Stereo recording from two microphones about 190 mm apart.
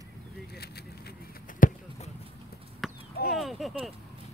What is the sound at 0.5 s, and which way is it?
Arrow, 55° left (ahead or behind).